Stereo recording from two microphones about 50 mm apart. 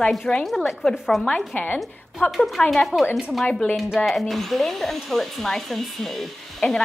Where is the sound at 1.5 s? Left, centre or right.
Left.